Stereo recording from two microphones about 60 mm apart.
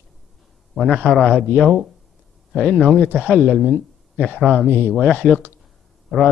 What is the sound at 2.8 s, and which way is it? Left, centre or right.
Speech, left.